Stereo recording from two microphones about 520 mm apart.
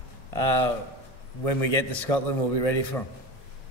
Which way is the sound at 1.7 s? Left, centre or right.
Left.